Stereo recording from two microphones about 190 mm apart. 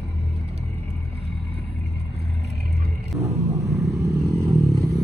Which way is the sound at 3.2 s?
15° right (ahead or behind).